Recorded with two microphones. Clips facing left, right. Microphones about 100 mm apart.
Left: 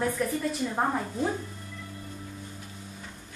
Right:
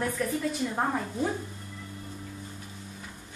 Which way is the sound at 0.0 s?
Centre (ahead or behind).